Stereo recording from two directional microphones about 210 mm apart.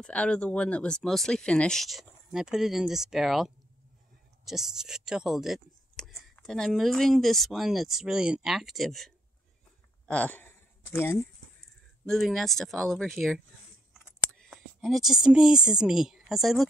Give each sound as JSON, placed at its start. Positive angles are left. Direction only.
{"t": 0.0, "sound": "speech", "side_deg": 5}
{"t": 10.0, "sound": "a sound", "side_deg": 5}
{"t": 12.1, "sound": "speech", "side_deg": 0}